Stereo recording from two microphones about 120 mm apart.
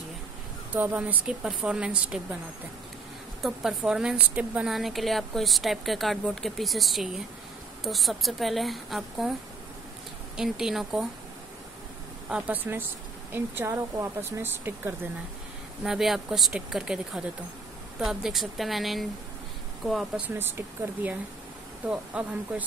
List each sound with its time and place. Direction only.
0.7 s a woman's voice: 15° right (ahead or behind)
3.4 s a woman's voice: 5° right (ahead or behind)
10.3 s a woman's voice: 5° right (ahead or behind)
12.3 s a woman's voice: 10° right (ahead or behind)
15.8 s a woman's voice: centre (ahead or behind)
20.3 s a woman's voice: 20° right (ahead or behind)